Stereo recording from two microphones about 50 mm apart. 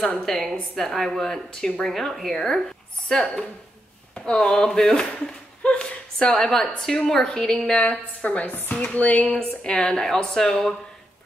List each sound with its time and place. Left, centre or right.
0.2 s a woman's voice: centre; by 6.3 s left
6.3 s a woman's voice: centre
8.2 s chopping: left
9.2 s a woman's voice: centre